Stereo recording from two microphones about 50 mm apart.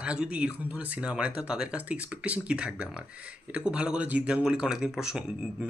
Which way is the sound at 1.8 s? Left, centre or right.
Right.